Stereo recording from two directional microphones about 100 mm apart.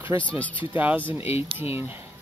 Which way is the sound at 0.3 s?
15° left (ahead or behind).